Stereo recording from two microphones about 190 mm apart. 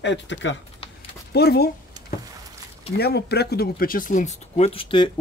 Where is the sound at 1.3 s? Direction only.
55° left (ahead or behind).